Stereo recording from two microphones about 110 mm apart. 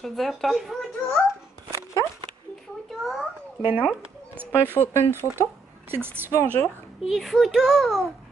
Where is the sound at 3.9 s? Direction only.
10° right (ahead or behind).